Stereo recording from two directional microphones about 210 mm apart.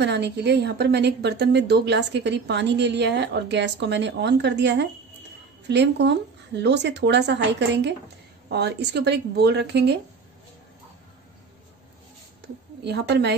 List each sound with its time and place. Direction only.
0.0 s a woman's voice: 55° right (ahead or behind)
12.8 s a woman's voice: 55° right (ahead or behind)